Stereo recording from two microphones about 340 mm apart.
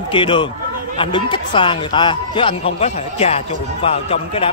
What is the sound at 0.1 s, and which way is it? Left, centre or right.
A man's voice, centre.